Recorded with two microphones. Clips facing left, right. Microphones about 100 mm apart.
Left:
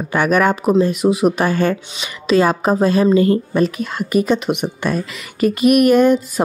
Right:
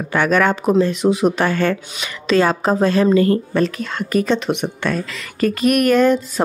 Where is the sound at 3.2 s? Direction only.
20° left (ahead or behind).